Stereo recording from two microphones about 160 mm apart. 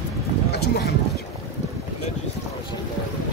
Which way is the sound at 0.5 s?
85° left.